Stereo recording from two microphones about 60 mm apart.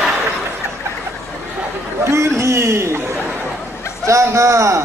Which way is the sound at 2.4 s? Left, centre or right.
Right.